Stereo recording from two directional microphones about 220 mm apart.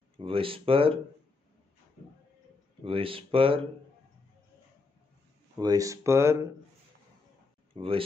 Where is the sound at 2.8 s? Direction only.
25° right (ahead or behind).